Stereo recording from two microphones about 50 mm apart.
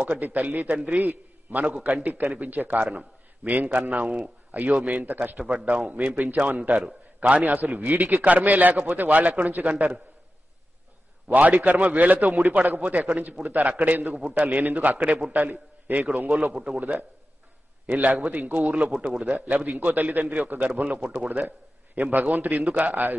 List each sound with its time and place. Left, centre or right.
0.2 s a man's voice: right
11.3 s a man's voice: right
16.5 s a man's voice: centre
17.8 s a man's voice: right